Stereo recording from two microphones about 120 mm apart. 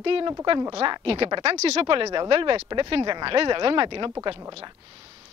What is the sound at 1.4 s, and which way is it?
Speech, 60° right (ahead or behind).